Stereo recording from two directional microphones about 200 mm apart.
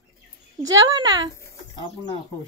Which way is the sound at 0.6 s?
20° right (ahead or behind).